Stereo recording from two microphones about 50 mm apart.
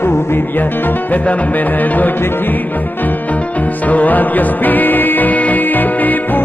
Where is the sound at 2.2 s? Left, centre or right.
Left.